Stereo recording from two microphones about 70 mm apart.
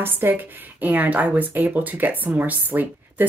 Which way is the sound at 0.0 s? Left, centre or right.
Right.